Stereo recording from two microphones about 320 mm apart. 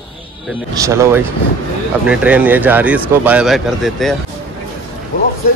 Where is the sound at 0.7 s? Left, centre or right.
Centre.